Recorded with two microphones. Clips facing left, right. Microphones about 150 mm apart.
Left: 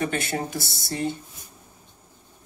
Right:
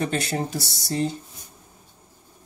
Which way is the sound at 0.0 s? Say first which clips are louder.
Right 1 dB; 35° right (ahead or behind).